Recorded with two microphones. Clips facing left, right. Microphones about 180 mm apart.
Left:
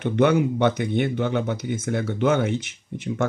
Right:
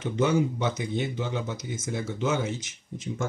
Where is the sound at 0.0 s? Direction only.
60° left (ahead or behind).